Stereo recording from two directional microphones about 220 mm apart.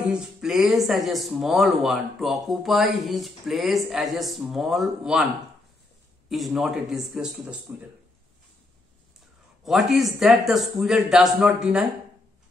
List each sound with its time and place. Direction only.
0.1 s speech: centre (ahead or behind)
6.2 s speech: centre (ahead or behind)
9.7 s speech: centre (ahead or behind)